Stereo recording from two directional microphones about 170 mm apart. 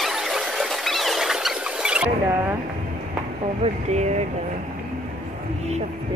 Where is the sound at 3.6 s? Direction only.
40° right (ahead or behind).